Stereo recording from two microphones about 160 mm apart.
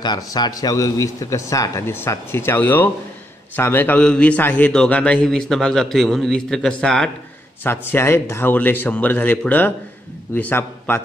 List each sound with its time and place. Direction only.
0.0 s a man's voice: 25° left (ahead or behind)